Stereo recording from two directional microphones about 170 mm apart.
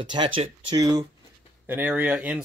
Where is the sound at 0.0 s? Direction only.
25° right (ahead or behind).